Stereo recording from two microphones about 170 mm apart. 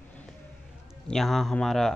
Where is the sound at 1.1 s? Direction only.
Centre (ahead or behind).